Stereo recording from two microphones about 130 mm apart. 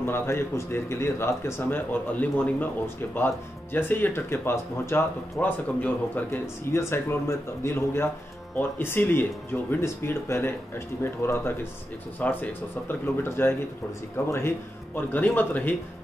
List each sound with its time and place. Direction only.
0.0 s speech: 20° left (ahead or behind)